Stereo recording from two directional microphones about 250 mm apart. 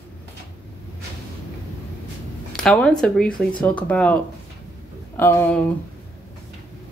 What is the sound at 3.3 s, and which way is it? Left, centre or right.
Speech, centre.